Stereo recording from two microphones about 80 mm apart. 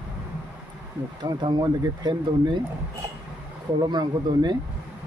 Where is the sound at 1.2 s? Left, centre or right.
Right.